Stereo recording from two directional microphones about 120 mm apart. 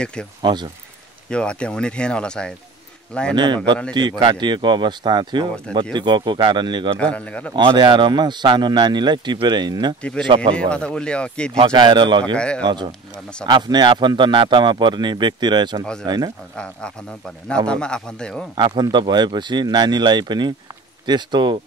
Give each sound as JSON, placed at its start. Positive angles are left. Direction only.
{"t": 0.0, "sound": "speech", "side_deg": 10}
{"t": 0.4, "sound": "a man's voice", "side_deg": -40}
{"t": 1.3, "sound": "speech", "side_deg": 10}
{"t": 3.3, "sound": "a man's voice", "side_deg": -40}
{"t": 7.0, "sound": "speech", "side_deg": 10}
{"t": 7.5, "sound": "a man's voice", "side_deg": -40}
{"t": 10.5, "sound": "speech", "side_deg": 10}
{"t": 11.5, "sound": "a man's voice", "side_deg": -45}
{"t": 12.4, "sound": "speech", "side_deg": 10}
{"t": 12.6, "sound": "a man's voice", "side_deg": -40}
{"t": 15.8, "sound": "speech", "side_deg": 5}
{"t": 18.5, "sound": "a man's voice", "side_deg": -40}